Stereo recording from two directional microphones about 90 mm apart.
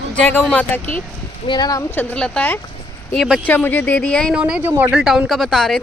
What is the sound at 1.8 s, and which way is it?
Speech, 20° left (ahead or behind).